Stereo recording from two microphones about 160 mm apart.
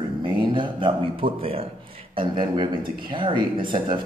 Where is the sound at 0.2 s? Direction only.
30° right (ahead or behind).